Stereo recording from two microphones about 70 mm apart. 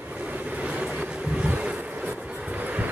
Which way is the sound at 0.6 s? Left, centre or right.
Centre.